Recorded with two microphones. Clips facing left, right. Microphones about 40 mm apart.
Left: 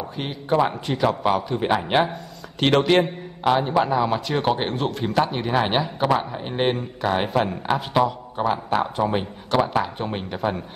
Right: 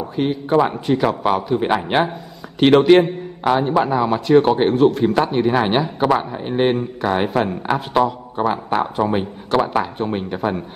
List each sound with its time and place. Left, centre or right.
0.1 s a man's voice: centre